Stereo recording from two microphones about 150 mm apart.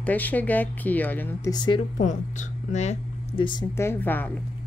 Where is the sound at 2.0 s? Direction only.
55° left (ahead or behind).